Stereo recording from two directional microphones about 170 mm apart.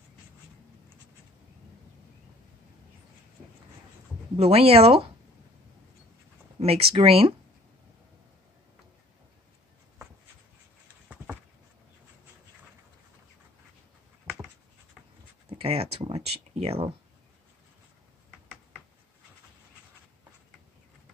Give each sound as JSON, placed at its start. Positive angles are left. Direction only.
{"t": 4.4, "sound": "speech", "side_deg": -35}
{"t": 6.6, "sound": "speech", "side_deg": -35}
{"t": 15.5, "sound": "a sound", "side_deg": -35}